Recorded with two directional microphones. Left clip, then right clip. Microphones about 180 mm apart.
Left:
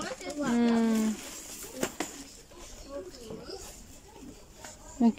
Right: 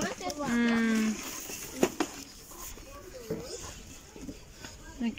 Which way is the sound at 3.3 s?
20° right (ahead or behind).